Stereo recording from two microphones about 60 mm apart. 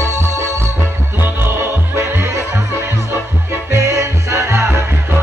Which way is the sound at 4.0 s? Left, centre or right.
Right.